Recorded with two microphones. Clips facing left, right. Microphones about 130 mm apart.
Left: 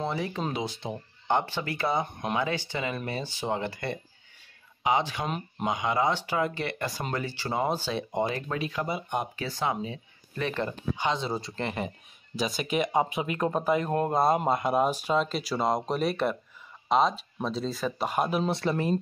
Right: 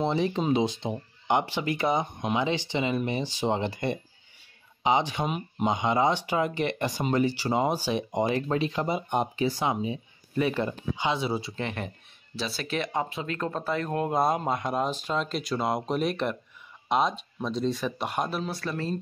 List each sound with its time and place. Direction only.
0.0 s speech: 25° right (ahead or behind)
5.2 s speech: 5° right (ahead or behind)
5.7 s speech: 25° right (ahead or behind)
8.4 s speech: 30° right (ahead or behind); by 11.9 s 5° left (ahead or behind)
12.4 s speech: 15° left (ahead or behind)
13.9 s speech: centre (ahead or behind)
18.4 s speech: 25° left (ahead or behind)